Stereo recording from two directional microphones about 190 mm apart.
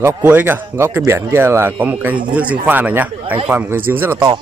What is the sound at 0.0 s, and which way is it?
Speech, 10° right (ahead or behind).